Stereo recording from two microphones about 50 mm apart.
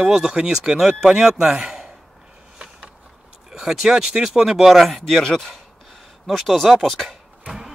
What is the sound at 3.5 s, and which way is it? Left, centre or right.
Speech, centre.